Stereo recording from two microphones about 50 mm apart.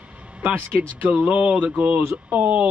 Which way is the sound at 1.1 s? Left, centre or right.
Right.